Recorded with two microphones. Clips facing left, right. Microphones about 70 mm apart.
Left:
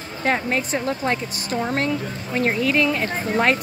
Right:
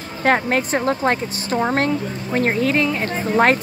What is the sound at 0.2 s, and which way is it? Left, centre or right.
Speech, right.